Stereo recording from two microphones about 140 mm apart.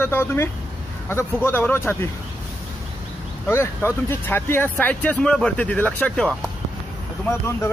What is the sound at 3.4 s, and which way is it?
Speech, 20° left (ahead or behind).